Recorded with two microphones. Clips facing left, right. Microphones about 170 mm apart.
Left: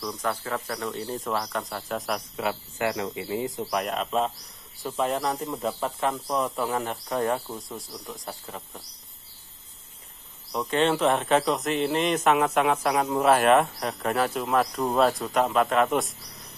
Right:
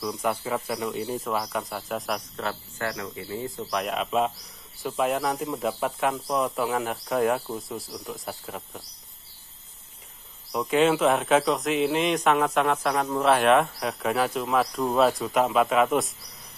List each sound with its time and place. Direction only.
0.0 s speech: 10° right (ahead or behind)
2.4 s speech: 20° left (ahead or behind)
3.7 s speech: centre (ahead or behind)
10.5 s speech: 5° right (ahead or behind)